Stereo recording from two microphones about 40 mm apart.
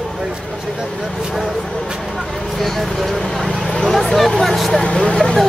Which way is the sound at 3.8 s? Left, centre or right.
Centre.